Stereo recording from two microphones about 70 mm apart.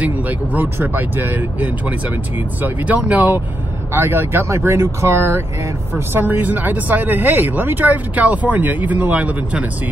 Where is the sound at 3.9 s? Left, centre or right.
Right.